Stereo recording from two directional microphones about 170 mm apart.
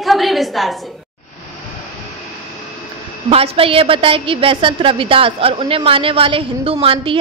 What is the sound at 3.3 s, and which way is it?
A woman's voice, 35° right (ahead or behind).